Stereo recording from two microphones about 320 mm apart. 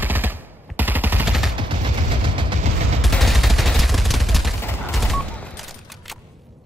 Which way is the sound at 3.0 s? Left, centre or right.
Centre.